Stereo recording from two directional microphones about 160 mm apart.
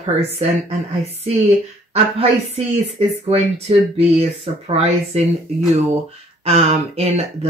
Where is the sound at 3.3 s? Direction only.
40° right (ahead or behind).